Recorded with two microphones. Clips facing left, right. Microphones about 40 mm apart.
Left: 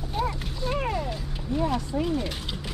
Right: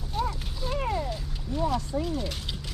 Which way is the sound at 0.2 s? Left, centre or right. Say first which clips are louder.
Left 1 dB; centre.